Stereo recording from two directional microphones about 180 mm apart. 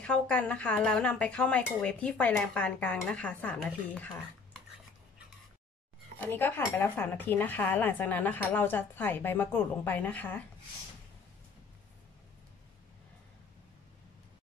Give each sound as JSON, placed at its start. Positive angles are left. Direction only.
{"t": 0.0, "sound": "speech", "side_deg": 5}
{"t": 6.1, "sound": "speech", "side_deg": 10}